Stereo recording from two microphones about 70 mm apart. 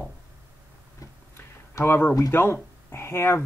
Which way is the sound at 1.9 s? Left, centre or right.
Left.